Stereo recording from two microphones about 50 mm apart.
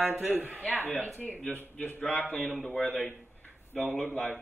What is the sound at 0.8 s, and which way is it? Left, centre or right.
A man's voice, left.